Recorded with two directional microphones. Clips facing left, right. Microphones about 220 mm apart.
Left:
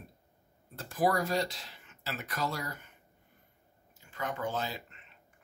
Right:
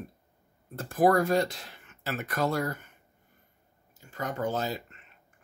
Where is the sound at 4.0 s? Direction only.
40° right (ahead or behind).